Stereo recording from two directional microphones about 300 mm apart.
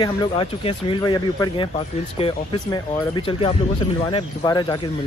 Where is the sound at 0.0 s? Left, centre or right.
Centre.